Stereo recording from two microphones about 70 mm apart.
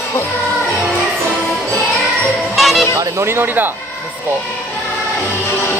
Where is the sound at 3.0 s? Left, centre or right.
Right.